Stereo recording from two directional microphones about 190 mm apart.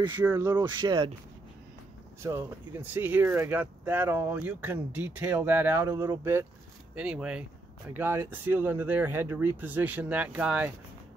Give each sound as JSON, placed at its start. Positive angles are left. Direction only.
{"t": 0.0, "sound": "speech", "side_deg": -20}
{"t": 2.2, "sound": "speech", "side_deg": -15}